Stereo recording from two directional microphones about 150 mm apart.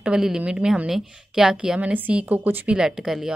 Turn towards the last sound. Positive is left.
turn(degrees=-5)  # may be behind; listen again after turning